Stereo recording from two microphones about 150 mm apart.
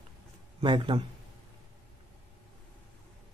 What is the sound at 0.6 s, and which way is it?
Speech, 35° right (ahead or behind).